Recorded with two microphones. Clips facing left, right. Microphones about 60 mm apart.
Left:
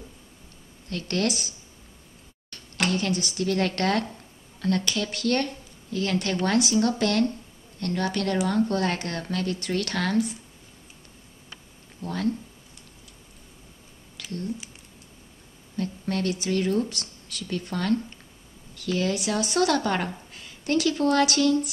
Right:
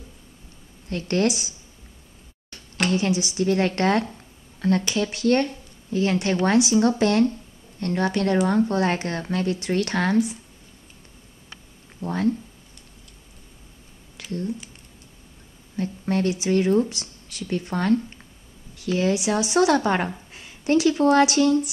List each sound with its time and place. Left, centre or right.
0.8 s a woman's voice: right
2.9 s a woman's voice: centre
12.0 s a woman's voice: right
14.1 s a sound: centre
15.7 s a woman's voice: right